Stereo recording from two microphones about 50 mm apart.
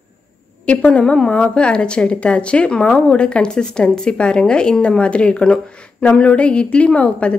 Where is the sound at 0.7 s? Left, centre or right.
Left.